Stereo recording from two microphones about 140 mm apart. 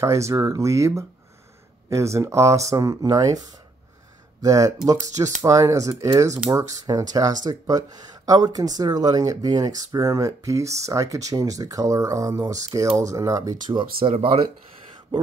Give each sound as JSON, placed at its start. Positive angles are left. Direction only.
{"t": 0.0, "sound": "speech", "side_deg": -20}
{"t": 13.9, "sound": "speech", "side_deg": -45}